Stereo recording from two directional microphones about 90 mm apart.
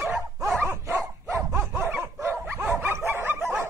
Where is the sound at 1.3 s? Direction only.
25° right (ahead or behind).